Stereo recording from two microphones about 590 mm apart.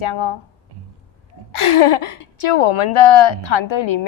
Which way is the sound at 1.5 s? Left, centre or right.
Left.